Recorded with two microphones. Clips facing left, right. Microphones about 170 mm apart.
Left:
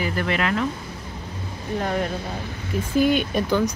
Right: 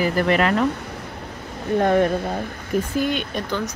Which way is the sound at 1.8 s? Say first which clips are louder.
Right 8 dB; 55° right (ahead or behind).